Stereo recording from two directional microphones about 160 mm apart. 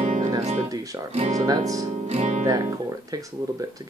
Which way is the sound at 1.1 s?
45° right (ahead or behind).